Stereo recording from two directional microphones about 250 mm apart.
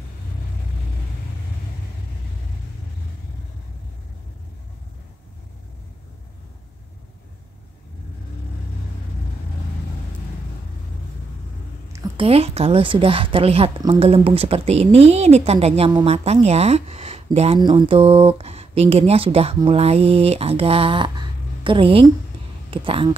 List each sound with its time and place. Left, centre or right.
11.9 s a woman's voice: centre